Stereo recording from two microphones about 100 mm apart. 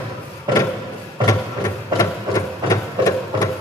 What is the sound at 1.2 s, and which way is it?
Printer, 35° left (ahead or behind).